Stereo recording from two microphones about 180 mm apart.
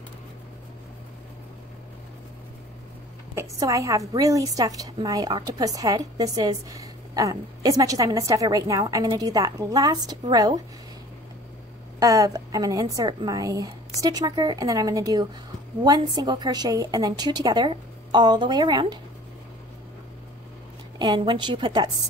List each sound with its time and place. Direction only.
3.3 s a woman's voice: 20° right (ahead or behind)
12.0 s a woman's voice: 20° right (ahead or behind)
21.0 s a woman's voice: 25° right (ahead or behind)